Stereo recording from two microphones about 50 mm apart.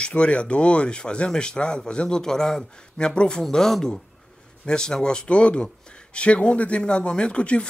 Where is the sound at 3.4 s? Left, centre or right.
Centre.